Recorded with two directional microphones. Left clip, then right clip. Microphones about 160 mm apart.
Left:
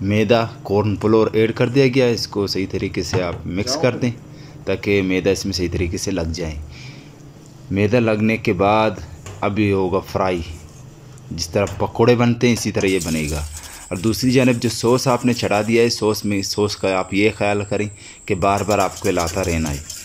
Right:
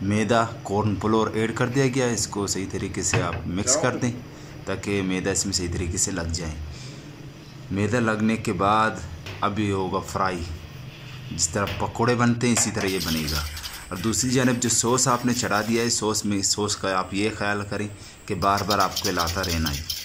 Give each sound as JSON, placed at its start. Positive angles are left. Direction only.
{"t": 0.0, "sound": "speech", "side_deg": 10}
{"t": 7.7, "sound": "speech", "side_deg": 15}